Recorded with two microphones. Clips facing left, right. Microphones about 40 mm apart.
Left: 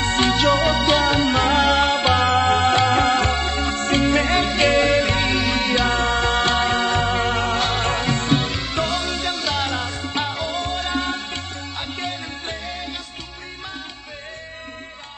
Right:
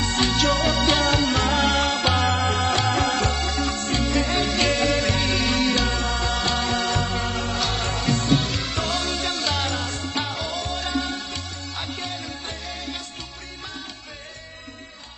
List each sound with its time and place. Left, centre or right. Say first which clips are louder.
0.0 s music: left 4 dB; left
0.4 s music: left 3 dB; centre
1.2 s music: left 4 dB; centre
1.9 s music: left 4 dB; left
2.2 s music: left 5 dB; left
4.6 s music: left 6 dB; left
5.3 s music: left 2 dB; centre
5.9 s music: left 6 dB; left
8.4 s music: left 3 dB; centre
10.5 s music: left 3 dB; left